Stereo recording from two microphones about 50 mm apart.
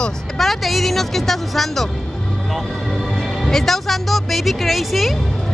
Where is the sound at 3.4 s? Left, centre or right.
Centre.